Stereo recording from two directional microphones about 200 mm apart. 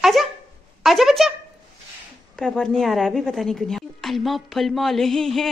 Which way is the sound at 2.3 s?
5° left (ahead or behind).